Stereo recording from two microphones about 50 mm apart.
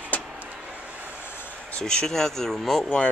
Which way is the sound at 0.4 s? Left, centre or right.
Right.